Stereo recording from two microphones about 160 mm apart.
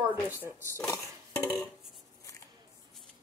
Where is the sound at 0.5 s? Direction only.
15° left (ahead or behind).